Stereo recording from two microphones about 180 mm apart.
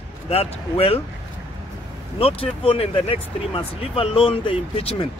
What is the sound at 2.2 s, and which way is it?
Speech, 30° left (ahead or behind).